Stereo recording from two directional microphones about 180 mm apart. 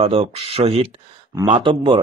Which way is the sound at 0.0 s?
30° right (ahead or behind).